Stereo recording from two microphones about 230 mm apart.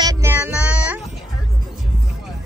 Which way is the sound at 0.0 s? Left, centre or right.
Centre.